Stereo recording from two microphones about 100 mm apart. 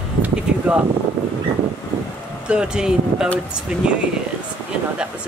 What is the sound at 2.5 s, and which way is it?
Speech, 10° right (ahead or behind).